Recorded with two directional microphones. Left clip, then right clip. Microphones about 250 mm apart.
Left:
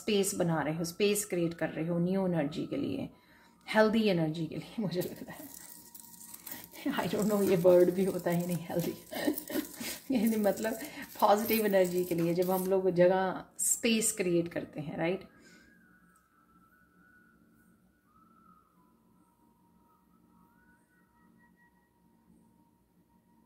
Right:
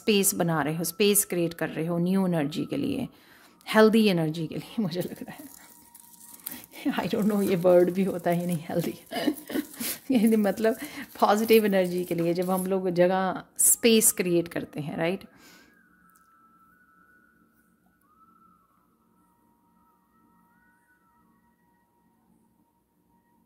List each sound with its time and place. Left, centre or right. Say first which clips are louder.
0.0 s speech: right 6 dB; right
6.4 s speech: right 6 dB; right